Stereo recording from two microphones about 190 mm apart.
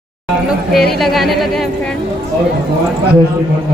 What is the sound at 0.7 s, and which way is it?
Speech, centre (ahead or behind).